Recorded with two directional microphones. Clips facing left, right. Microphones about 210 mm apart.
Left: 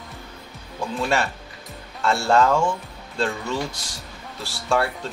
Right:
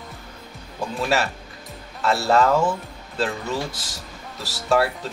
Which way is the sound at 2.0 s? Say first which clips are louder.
Even; centre (ahead or behind).